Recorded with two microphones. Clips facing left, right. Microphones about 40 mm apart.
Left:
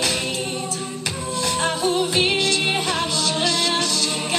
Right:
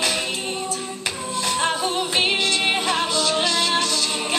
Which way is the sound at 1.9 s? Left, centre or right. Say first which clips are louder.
Left 2 dB; centre.